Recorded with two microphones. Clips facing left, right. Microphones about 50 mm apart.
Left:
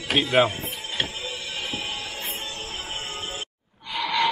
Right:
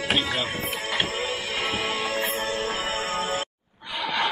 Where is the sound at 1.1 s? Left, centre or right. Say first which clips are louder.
Right 5 dB; right.